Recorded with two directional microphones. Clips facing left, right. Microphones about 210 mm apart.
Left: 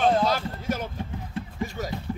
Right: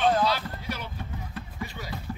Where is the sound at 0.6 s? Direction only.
45° left (ahead or behind).